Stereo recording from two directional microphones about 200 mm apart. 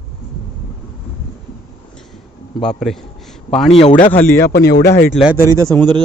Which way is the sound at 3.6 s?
30° left (ahead or behind).